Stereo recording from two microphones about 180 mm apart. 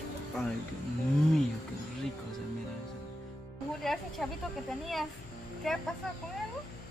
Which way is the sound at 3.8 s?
Centre (ahead or behind).